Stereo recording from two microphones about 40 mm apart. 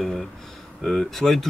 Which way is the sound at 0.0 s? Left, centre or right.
Centre.